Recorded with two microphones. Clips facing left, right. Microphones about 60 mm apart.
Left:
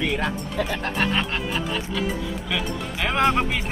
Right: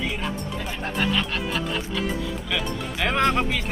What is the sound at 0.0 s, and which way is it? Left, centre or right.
Speech, left.